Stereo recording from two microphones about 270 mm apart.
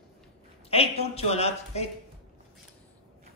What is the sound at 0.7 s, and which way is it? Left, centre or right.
Speech, left.